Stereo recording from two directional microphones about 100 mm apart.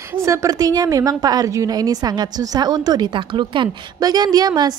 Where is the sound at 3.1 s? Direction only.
55° right (ahead or behind).